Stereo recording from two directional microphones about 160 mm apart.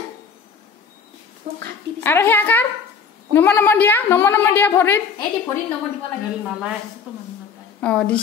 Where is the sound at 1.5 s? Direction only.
50° right (ahead or behind).